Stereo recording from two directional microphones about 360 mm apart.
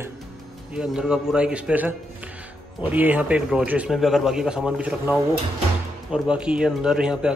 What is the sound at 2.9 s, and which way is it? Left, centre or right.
Speech, centre.